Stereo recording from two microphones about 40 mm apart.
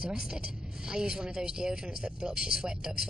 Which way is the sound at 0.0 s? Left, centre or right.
Centre.